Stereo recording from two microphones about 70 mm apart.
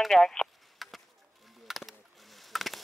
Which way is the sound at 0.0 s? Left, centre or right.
Centre.